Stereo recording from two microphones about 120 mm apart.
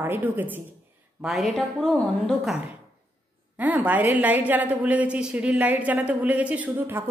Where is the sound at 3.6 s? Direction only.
15° right (ahead or behind).